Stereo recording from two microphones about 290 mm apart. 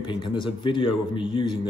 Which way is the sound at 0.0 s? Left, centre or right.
Centre.